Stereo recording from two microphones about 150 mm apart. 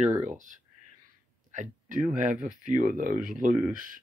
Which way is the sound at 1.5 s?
55° right (ahead or behind).